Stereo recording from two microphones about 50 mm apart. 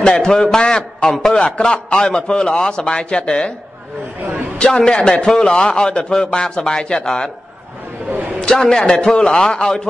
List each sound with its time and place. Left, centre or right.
0.0 s a man's voice: centre
4.6 s a man's voice: centre
8.4 s a man's voice: centre